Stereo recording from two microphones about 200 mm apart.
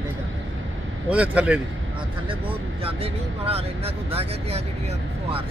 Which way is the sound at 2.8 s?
30° right (ahead or behind).